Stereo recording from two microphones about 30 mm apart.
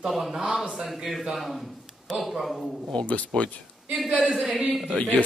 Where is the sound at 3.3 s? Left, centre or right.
Left.